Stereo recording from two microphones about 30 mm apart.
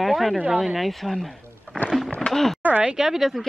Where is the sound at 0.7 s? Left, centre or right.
Centre.